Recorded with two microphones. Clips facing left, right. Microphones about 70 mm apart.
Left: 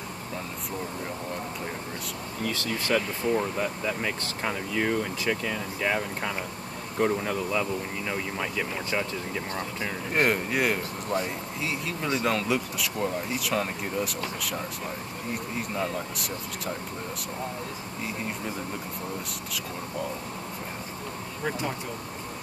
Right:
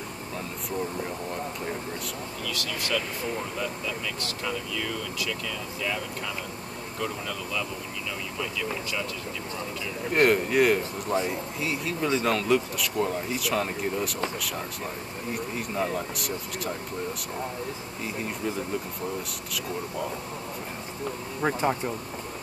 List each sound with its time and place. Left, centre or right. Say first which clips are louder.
2.4 s speech: left 4 dB; left
10.1 s speech: right 4 dB; centre
15.3 s speech: right 2 dB; centre
21.5 s speech: right 5 dB; right